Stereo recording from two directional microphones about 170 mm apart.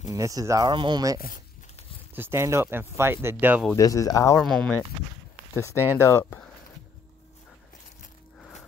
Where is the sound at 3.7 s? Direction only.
20° left (ahead or behind).